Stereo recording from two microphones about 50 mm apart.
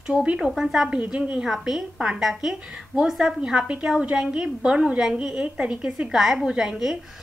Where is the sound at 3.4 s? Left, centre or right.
Centre.